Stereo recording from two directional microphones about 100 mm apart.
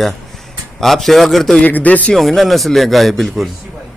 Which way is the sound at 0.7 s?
Centre (ahead or behind).